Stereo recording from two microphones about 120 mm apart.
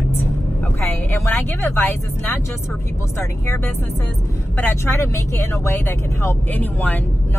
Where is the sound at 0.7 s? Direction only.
15° left (ahead or behind).